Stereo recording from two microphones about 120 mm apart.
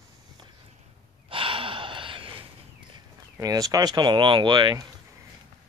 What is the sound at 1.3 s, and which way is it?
Gasp, 45° right (ahead or behind).